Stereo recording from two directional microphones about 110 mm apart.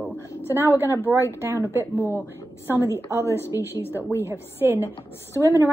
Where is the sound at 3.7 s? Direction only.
20° left (ahead or behind).